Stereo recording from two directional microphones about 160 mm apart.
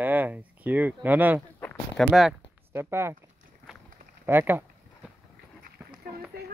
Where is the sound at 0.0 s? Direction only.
10° right (ahead or behind).